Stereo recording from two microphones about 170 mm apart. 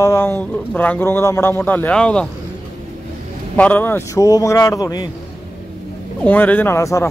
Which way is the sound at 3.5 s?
10° left (ahead or behind).